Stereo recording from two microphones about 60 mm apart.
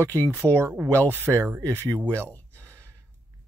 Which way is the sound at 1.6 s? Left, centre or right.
Left.